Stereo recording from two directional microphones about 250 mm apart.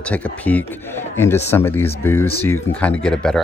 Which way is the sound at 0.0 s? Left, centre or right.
Centre.